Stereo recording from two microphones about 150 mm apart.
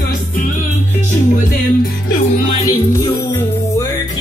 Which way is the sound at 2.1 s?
55° left (ahead or behind).